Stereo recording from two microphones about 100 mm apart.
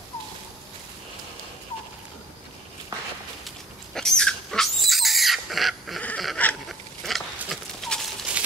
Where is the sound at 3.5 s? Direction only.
5° left (ahead or behind).